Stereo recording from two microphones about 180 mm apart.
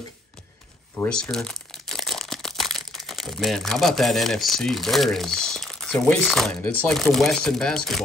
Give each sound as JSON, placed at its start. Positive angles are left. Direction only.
{"t": 0.9, "sound": "speech", "side_deg": 5}